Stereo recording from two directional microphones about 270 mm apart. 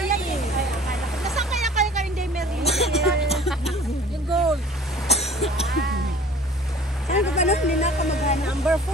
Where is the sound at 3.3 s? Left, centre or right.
Centre.